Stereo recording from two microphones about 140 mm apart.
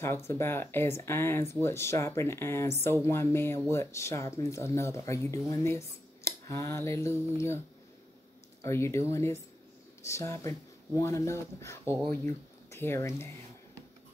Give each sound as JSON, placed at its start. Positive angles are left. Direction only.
{"t": 0.0, "sound": "speech", "side_deg": 20}
{"t": 8.6, "sound": "speech", "side_deg": 20}